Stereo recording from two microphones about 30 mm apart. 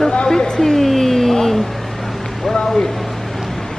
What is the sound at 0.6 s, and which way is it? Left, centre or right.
A woman's voice, centre.